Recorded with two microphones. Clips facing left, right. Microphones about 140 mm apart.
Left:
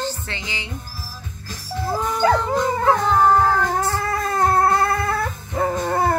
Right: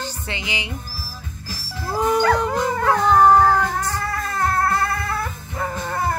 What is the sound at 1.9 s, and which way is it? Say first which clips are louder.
Howl: right 1 dB; 15° right (ahead or behind).